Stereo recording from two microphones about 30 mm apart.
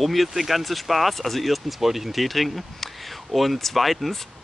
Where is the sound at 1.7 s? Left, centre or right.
Centre.